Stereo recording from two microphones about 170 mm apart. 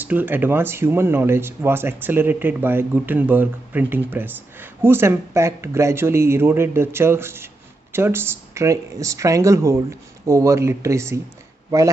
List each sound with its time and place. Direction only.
0.0 s speech: 10° right (ahead or behind)